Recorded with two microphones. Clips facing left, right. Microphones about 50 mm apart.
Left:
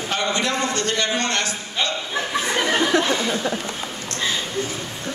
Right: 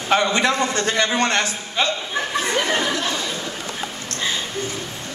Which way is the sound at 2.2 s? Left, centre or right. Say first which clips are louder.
Even; centre.